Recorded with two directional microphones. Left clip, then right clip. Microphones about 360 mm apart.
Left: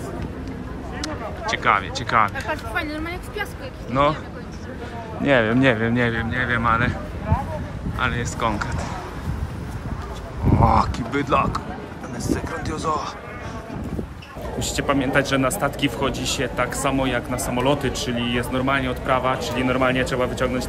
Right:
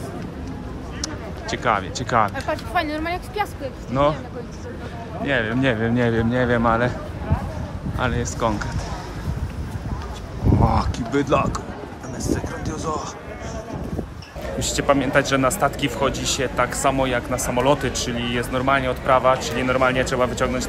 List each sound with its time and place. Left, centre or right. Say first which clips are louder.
1.0 s speech: left 4 dB; centre
2.3 s speech: right 3 dB; right
5.2 s speech: left 4 dB; centre
8.0 s speech: even; centre
10.5 s speech: left 3 dB; centre
14.6 s a man's voice: right 3 dB; centre